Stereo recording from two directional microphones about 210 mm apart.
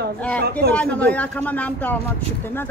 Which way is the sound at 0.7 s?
5° left (ahead or behind).